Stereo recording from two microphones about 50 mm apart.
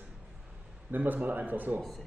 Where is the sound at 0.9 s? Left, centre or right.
Right.